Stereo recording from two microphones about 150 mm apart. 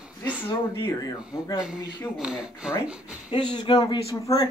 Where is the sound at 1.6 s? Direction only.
5° right (ahead or behind).